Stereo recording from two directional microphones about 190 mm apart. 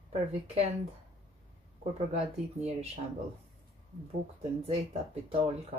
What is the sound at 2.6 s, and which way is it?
Speech, 35° right (ahead or behind).